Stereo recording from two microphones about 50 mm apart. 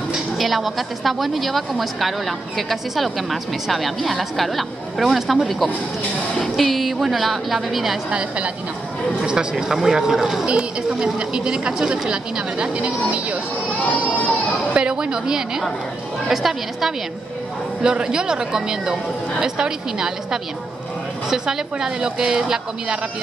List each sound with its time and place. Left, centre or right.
0.4 s speech: centre
6.4 s speech: centre
8.1 s a woman's voice: right
13.7 s speech: left
14.7 s a woman's voice: centre
17.8 s a woman's voice: centre